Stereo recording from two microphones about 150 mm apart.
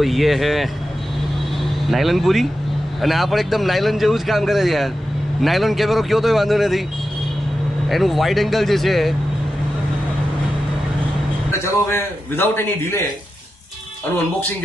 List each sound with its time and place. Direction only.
0.0 s a man's voice: centre (ahead or behind)
1.9 s a man's voice: centre (ahead or behind)
7.9 s a man's voice: centre (ahead or behind)
11.5 s a man's voice: 20° left (ahead or behind)